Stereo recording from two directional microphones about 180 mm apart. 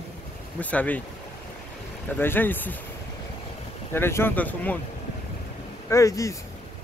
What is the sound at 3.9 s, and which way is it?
Speech, 15° left (ahead or behind).